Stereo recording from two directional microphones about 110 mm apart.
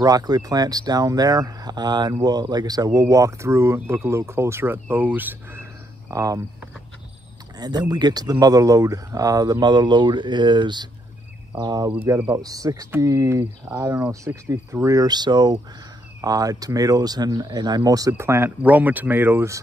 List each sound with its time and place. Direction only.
0.0 s speech: 35° right (ahead or behind)
7.5 s speech: 40° right (ahead or behind)